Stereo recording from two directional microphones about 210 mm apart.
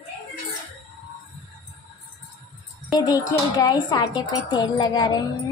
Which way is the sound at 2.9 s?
15° left (ahead or behind).